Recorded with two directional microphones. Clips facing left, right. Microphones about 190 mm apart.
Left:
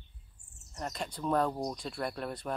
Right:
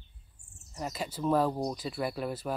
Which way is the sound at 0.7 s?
5° right (ahead or behind).